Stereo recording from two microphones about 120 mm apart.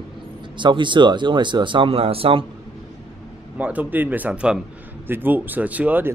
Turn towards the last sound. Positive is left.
turn(degrees=-15)  # may be behind; listen again after turning